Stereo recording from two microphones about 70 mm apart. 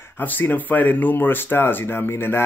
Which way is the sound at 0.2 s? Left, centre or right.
Left.